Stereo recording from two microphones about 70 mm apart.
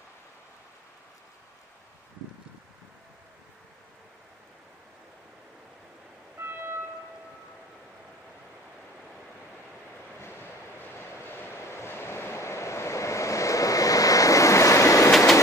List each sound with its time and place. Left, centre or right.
6.3 s music: right
10.2 s vehicle: left